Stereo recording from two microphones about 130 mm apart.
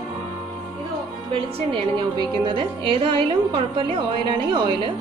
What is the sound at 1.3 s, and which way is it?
A woman's voice, 45° right (ahead or behind).